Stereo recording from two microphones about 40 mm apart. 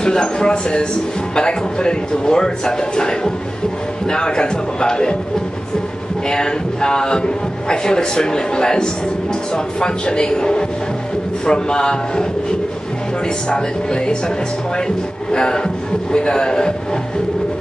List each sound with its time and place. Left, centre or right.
0.0 s a man's voice: centre
6.2 s a man's voice: centre
15.3 s a man's voice: left